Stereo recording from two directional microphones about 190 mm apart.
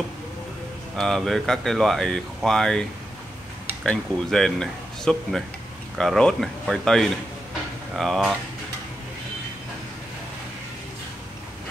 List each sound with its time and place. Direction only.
0.9 s speech: centre (ahead or behind)